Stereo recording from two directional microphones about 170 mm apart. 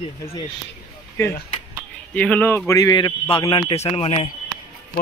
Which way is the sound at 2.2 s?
10° left (ahead or behind).